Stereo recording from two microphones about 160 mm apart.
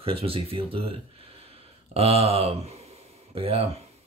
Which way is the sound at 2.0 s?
40° right (ahead or behind).